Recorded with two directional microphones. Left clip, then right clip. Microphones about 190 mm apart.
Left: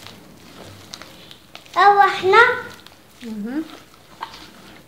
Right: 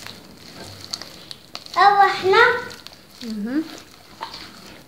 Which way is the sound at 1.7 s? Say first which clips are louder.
Left 1 dB; 55° left (ahead or behind).